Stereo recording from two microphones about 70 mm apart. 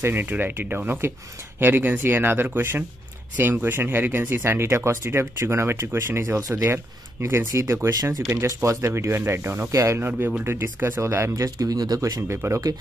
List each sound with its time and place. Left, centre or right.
0.0 s speech: right
9.9 s speech: right
11.3 s speech: right
12.4 s speech: right